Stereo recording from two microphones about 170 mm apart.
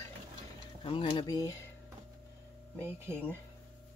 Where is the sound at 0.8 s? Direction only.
30° left (ahead or behind).